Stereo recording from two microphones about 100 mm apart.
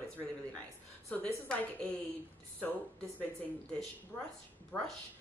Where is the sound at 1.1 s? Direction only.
15° left (ahead or behind).